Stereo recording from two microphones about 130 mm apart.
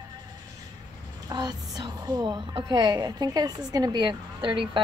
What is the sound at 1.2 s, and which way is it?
A woman's voice, 30° right (ahead or behind).